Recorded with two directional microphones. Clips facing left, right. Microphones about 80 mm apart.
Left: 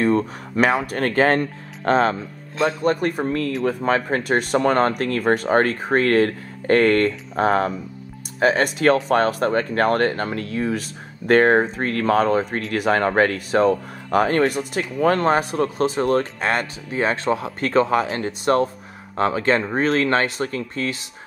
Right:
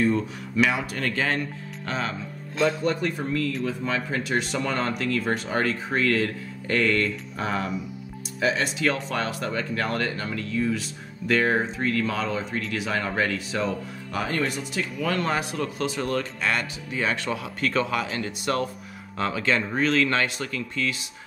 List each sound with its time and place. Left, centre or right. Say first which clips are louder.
0.0 s speech: left 4 dB; left